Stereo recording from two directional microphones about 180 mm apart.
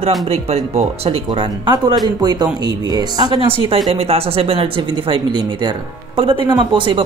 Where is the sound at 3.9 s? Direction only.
35° right (ahead or behind).